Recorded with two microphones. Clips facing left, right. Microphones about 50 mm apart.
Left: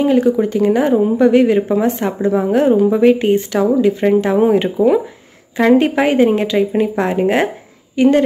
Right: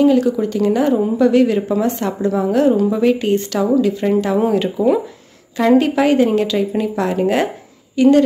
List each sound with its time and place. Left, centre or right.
0.0 s speech: left